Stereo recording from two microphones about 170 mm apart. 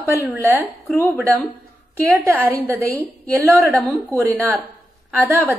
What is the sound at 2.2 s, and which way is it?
A woman's voice, 15° right (ahead or behind).